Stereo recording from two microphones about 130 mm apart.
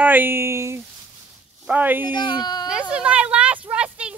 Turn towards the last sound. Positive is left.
turn(degrees=-10)  # may be behind; listen again after turning